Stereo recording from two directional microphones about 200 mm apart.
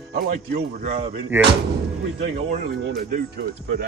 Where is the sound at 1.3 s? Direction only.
10° right (ahead or behind).